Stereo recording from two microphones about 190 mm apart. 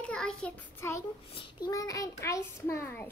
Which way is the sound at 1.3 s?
25° left (ahead or behind).